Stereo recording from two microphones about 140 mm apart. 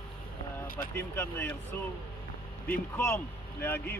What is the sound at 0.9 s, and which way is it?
Speech, 15° left (ahead or behind).